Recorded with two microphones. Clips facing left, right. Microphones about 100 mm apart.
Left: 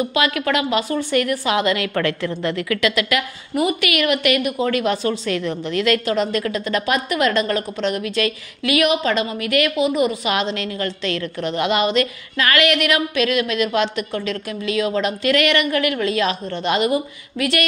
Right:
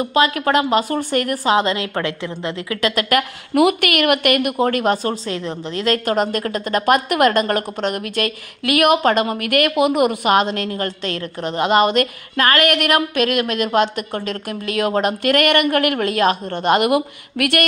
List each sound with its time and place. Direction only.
0.0 s a woman's voice: 40° right (ahead or behind); by 2.8 s 25° right (ahead or behind)
2.8 s a woman's voice: 40° right (ahead or behind)
6.0 s a woman's voice: 45° right (ahead or behind)